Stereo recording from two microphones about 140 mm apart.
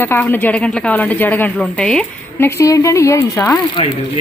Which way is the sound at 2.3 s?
20° left (ahead or behind).